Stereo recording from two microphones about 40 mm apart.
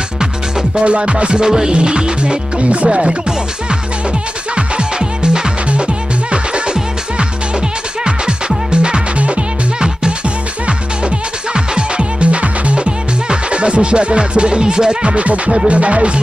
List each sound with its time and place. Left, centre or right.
0.2 s music: centre
0.8 s music: right
1.2 s music: centre
4.6 s music: right
11.5 s music: right